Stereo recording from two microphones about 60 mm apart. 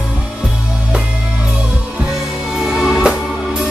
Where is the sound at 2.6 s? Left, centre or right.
Centre.